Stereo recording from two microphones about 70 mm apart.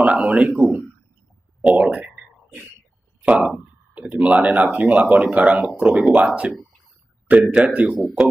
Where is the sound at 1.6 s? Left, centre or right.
Centre.